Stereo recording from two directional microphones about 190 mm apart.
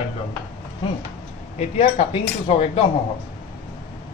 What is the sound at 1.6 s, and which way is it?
Speech, 35° left (ahead or behind).